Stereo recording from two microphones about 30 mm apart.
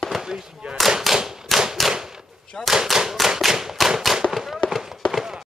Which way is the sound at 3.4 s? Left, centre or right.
Centre.